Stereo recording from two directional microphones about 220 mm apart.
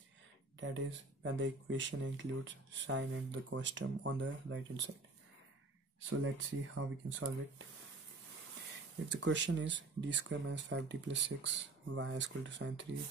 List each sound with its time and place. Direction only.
0.6 s speech: 55° right (ahead or behind)
6.1 s speech: 60° right (ahead or behind)
9.1 s speech: 55° right (ahead or behind)